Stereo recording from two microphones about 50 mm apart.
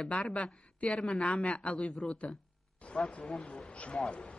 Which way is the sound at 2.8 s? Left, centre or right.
Left.